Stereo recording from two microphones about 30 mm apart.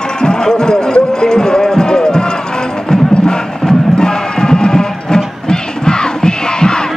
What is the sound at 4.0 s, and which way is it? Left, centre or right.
Music, left.